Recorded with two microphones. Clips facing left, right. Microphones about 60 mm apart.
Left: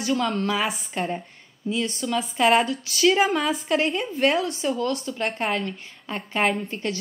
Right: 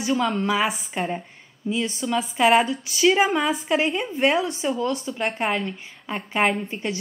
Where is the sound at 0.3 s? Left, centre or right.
Centre.